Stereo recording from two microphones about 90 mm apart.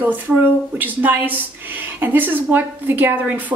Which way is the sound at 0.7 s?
20° right (ahead or behind).